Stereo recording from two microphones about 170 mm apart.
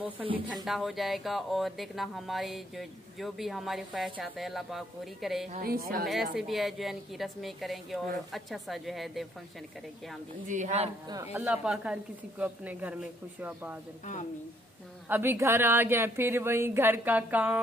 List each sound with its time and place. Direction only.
0.7 s speech: centre (ahead or behind)
5.6 s a woman's voice: 60° right (ahead or behind)
6.3 s speech: centre (ahead or behind)
10.5 s speech: 45° right (ahead or behind)
11.3 s a woman's voice: 5° right (ahead or behind)
15.0 s a woman's voice: 10° right (ahead or behind)